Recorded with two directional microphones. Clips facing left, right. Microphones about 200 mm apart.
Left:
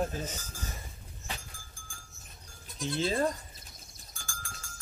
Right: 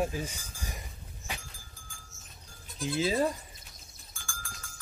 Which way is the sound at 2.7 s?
5° right (ahead or behind).